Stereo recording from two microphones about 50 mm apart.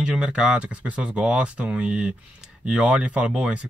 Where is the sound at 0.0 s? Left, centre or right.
Centre.